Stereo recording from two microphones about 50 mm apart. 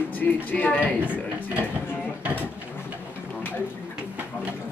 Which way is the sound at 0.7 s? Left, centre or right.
Right.